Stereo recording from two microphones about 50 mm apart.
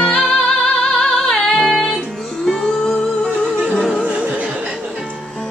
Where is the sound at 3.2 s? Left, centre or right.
Left.